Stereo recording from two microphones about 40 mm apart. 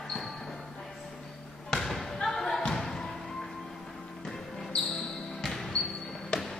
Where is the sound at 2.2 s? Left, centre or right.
Centre.